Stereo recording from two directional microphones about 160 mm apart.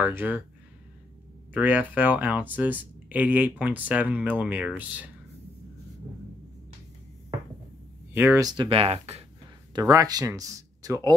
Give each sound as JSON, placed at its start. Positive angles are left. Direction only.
{"t": 0.0, "sound": "speech", "side_deg": -15}
{"t": 1.5, "sound": "speech", "side_deg": -10}
{"t": 8.1, "sound": "speech", "side_deg": -15}
{"t": 8.5, "sound": "speech", "side_deg": -35}
{"t": 9.8, "sound": "speech", "side_deg": -25}